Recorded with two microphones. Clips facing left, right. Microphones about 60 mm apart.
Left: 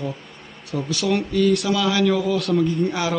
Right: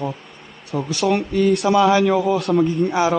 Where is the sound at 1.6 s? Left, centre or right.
Right.